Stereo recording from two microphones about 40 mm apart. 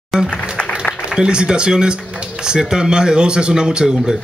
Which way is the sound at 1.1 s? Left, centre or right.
Right.